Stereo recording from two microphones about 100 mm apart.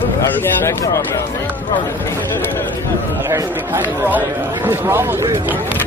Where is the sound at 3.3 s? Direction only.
25° right (ahead or behind).